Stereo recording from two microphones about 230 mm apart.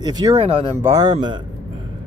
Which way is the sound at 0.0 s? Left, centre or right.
Centre.